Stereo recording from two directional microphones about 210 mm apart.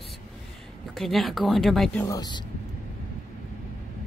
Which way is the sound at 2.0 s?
20° left (ahead or behind).